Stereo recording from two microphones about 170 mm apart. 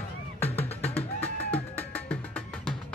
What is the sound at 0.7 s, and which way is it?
Music, 35° left (ahead or behind).